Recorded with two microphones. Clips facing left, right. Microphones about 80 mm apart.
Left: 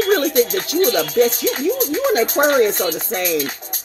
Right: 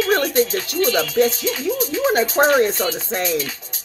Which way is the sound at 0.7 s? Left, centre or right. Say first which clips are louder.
Left 2 dB; left.